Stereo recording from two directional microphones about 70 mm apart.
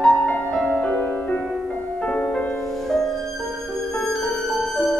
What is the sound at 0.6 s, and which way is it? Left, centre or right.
Music, centre.